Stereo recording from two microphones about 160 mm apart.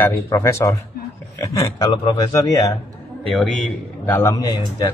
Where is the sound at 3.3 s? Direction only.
Centre (ahead or behind).